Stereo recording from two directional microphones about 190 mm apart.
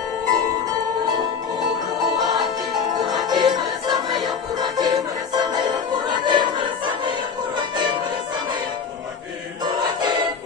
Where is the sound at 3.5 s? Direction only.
20° right (ahead or behind).